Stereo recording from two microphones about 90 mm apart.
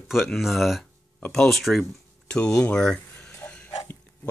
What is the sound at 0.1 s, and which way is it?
Speech, centre (ahead or behind).